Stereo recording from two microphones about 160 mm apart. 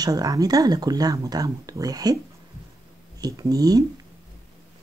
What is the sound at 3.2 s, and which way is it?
Speech, 25° right (ahead or behind).